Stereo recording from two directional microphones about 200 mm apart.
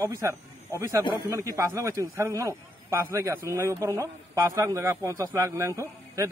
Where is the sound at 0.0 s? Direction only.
15° right (ahead or behind).